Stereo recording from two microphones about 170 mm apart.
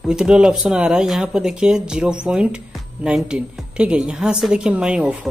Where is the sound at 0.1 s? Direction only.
5° right (ahead or behind).